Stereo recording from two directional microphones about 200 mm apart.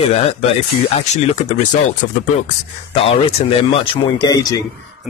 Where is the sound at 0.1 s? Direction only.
30° left (ahead or behind).